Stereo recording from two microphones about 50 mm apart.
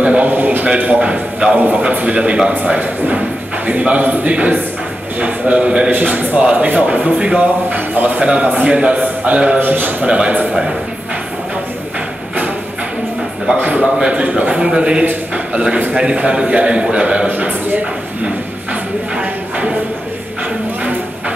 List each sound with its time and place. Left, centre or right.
0.0 s a sound: right
0.3 s a sound: right
0.7 s a man's voice: right
2.8 s a man's voice: right
5.9 s a man's voice: right
7.9 s a man's voice: right
8.2 s a man's voice: right
9.6 s a man's voice: right
10.0 s a man's voice: centre
13.6 s a man's voice: right
17.3 s a man's voice: right